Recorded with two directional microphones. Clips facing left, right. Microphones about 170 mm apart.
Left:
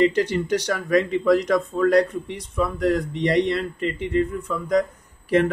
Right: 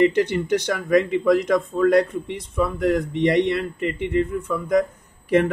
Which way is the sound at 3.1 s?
60° right (ahead or behind).